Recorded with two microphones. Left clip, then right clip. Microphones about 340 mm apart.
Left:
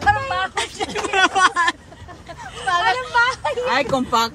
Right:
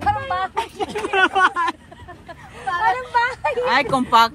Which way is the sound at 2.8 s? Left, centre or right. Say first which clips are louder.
Right 1 dB; centre.